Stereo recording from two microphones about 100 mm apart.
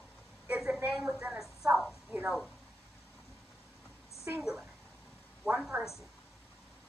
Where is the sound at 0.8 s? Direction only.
10° right (ahead or behind).